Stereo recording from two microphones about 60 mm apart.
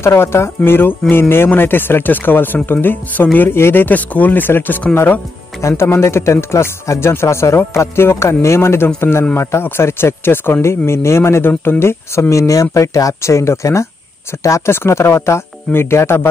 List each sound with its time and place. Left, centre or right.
0.0 s speech: left
5.6 s speech: left
14.7 s speech: left